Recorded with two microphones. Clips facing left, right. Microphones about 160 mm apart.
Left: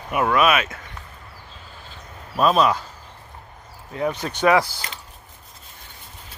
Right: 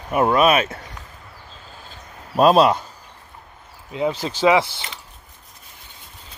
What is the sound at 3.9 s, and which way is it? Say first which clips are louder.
Speech: right 2 dB; 20° right (ahead or behind).